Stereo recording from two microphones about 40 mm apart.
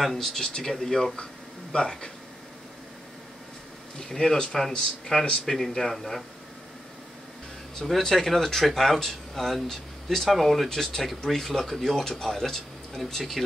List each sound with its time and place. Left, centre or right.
0.0 s speech: centre
1.7 s speech: left
4.1 s speech: centre
5.8 s speech: centre
8.0 s speech: centre
11.0 s speech: centre